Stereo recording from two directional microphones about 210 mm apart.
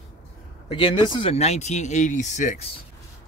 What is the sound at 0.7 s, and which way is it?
Speech, 25° left (ahead or behind).